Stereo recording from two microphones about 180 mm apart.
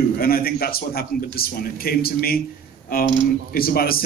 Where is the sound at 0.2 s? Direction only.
55° left (ahead or behind).